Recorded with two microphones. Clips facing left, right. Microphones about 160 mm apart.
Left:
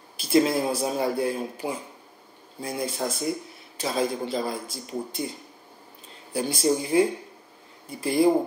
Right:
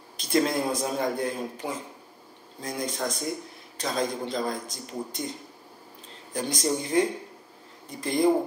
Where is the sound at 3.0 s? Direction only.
5° left (ahead or behind).